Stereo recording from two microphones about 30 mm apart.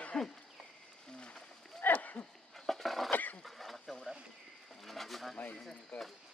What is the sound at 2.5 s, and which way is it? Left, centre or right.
Dog, centre.